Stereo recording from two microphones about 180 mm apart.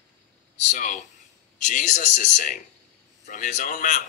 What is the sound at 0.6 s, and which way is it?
Speech, 45° left (ahead or behind).